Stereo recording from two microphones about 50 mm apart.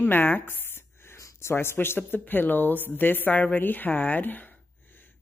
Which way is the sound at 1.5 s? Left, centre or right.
Left.